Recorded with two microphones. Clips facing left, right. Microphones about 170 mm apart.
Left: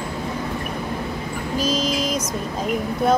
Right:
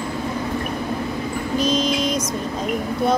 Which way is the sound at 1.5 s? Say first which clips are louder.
Right 2 dB; 5° left (ahead or behind).